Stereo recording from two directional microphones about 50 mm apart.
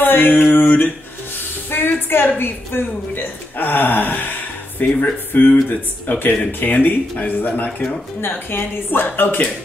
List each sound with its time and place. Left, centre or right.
0.0 s a sound: left
2.2 s speech: left
8.2 s speech: left